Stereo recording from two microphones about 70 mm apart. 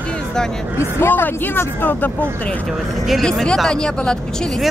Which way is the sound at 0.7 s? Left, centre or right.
Left.